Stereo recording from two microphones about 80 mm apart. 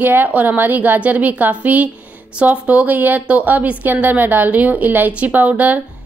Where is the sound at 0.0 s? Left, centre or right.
Right.